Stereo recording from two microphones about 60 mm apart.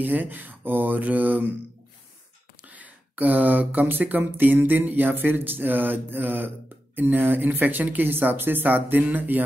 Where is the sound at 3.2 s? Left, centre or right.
Right.